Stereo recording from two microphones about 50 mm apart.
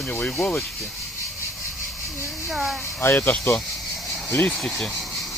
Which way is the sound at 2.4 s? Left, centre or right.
Centre.